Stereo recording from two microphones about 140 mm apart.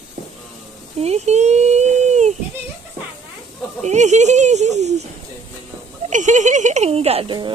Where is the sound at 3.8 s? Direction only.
55° right (ahead or behind).